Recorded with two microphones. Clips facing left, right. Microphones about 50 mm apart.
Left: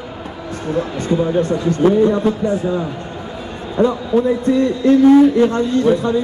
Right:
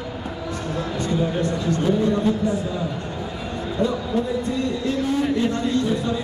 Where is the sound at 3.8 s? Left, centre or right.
Left.